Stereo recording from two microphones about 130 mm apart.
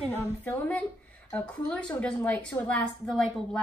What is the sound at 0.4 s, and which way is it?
A woman's voice, 10° left (ahead or behind).